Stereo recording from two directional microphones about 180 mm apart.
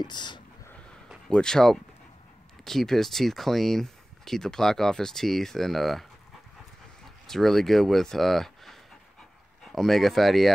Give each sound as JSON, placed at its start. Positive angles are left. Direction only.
{"t": 0.0, "sound": "speech", "side_deg": 25}
{"t": 1.0, "sound": "a sound", "side_deg": 5}
{"t": 2.6, "sound": "speech", "side_deg": 0}
{"t": 7.2, "sound": "speech", "side_deg": 0}